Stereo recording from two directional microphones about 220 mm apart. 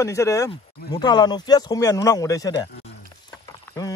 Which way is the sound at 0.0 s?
15° left (ahead or behind).